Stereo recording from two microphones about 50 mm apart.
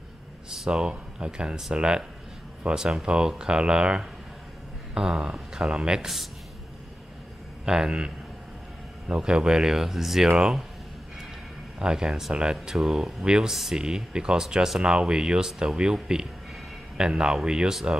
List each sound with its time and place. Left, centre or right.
0.7 s speech: centre
7.6 s speech: centre
9.1 s speech: centre
11.8 s speech: centre
13.2 s speech: centre